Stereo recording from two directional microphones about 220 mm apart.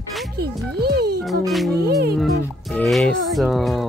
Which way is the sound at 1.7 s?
45° right (ahead or behind).